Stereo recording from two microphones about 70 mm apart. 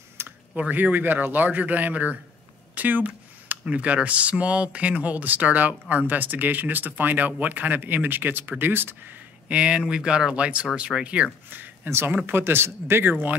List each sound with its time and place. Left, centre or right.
0.2 s a sound: right
0.6 s speech: right
9.5 s speech: centre
11.5 s speech: right